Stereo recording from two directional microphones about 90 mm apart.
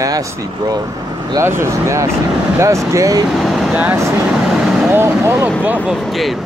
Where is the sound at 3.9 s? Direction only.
30° right (ahead or behind).